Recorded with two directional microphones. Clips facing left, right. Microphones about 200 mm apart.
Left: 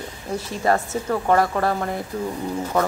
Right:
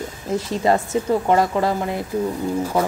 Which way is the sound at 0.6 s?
20° right (ahead or behind).